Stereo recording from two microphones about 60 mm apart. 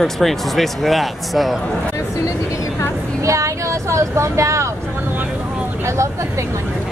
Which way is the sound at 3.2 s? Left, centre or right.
Right.